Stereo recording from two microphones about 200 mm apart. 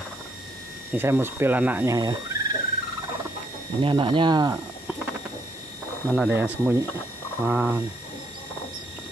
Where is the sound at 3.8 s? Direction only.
25° right (ahead or behind).